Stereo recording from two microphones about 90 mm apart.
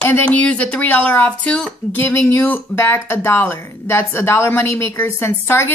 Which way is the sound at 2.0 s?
25° left (ahead or behind).